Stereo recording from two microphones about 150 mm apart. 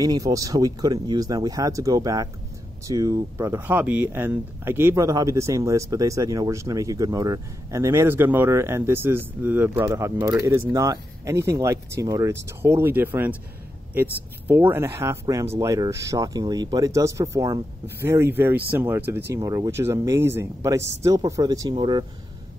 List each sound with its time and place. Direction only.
0.0 s speech: 25° right (ahead or behind)
14.5 s speech: 15° right (ahead or behind)